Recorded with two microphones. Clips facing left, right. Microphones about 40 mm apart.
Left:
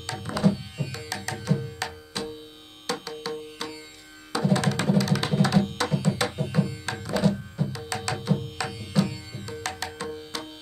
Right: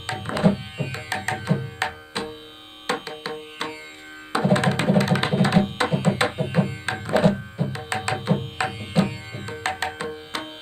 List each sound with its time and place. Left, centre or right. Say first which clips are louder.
0.0 s tabla: right 3 dB; right
2.9 s music: right 3 dB; right